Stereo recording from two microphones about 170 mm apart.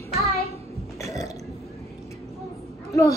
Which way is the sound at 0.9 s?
20° left (ahead or behind).